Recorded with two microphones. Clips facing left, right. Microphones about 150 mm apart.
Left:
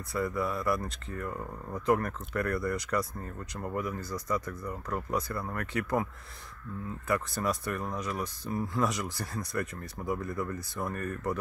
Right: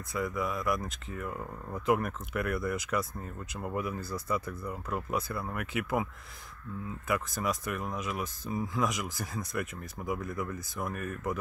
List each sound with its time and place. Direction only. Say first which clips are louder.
0.1 s speech: left 2 dB; centre (ahead or behind)
0.7 s speech: left 1 dB; 15° right (ahead or behind)
1.3 s speech: left 1 dB; 5° right (ahead or behind)
7.1 s speech: left 1 dB; 5° right (ahead or behind)